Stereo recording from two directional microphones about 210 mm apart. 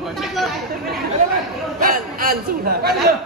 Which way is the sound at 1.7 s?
45° right (ahead or behind).